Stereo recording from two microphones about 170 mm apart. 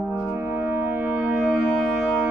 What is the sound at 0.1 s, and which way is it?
French horn, 10° right (ahead or behind).